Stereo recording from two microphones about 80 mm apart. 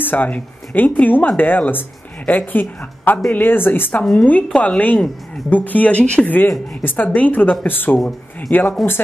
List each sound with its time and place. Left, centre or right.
0.0 s speech: left
4.0 s speech: centre